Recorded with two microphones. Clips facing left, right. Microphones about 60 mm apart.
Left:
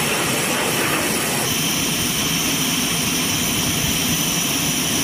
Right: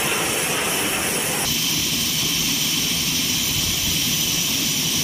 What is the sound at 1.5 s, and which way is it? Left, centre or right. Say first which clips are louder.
Vehicle: left 3 dB; left.